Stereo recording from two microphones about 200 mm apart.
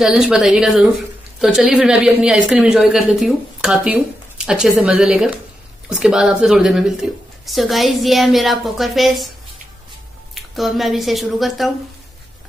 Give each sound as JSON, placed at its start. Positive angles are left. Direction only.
{"t": 0.0, "sound": "a woman's voice", "side_deg": 0}
{"t": 10.3, "sound": "a woman's voice", "side_deg": 0}